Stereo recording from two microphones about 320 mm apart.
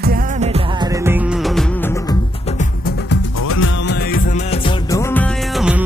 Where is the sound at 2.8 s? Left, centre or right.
Left.